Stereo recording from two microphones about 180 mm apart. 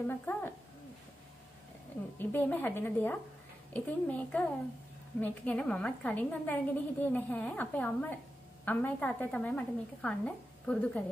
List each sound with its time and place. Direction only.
0.0 s a woman's voice: 10° left (ahead or behind)
2.1 s a woman's voice: 10° left (ahead or behind)